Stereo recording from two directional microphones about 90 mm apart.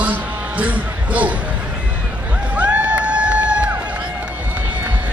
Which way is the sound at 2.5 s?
15° right (ahead or behind).